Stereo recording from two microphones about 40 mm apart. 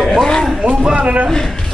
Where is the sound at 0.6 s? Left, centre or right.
Right.